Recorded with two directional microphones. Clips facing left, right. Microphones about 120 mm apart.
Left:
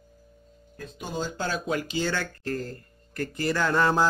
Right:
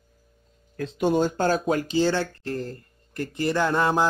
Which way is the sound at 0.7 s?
70° right (ahead or behind).